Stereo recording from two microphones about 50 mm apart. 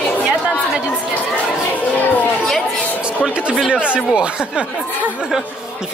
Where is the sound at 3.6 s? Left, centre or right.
Centre.